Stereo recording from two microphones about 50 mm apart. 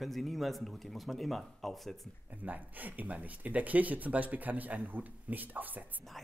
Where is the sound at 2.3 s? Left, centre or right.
Right.